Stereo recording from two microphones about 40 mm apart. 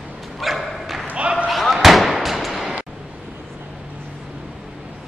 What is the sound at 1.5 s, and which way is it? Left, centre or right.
Slam, centre.